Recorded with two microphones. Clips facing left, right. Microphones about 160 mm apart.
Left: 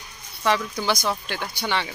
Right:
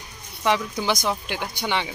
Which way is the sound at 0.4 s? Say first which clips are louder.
Even; 15° right (ahead or behind).